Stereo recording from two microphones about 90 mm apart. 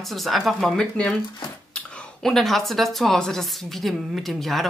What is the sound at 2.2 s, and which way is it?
Speech, 5° left (ahead or behind).